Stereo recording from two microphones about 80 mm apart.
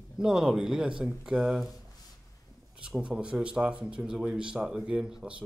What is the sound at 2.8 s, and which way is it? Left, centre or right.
Speech, centre.